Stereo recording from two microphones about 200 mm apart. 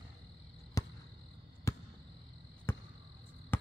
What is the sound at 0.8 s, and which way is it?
Basketball bounce, 15° left (ahead or behind).